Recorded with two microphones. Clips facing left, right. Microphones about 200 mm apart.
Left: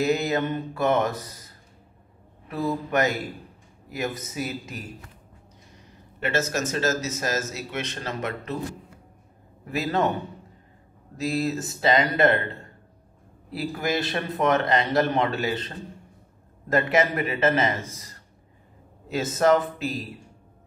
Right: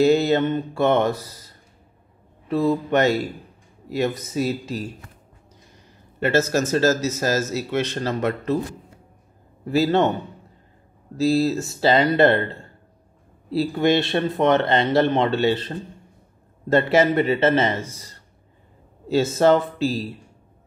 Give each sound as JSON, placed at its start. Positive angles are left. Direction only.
{"t": 0.0, "sound": "speech", "side_deg": -30}
{"t": 2.4, "sound": "speech", "side_deg": -25}
{"t": 6.1, "sound": "speech", "side_deg": -35}
{"t": 9.7, "sound": "speech", "side_deg": -30}
{"t": 11.1, "sound": "speech", "side_deg": -30}